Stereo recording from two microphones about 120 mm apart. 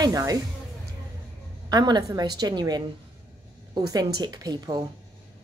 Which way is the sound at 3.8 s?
30° right (ahead or behind).